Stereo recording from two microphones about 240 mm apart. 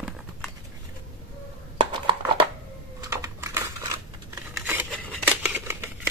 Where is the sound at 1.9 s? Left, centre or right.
Right.